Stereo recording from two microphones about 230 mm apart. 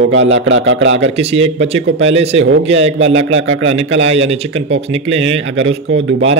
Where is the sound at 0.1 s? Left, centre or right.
Right.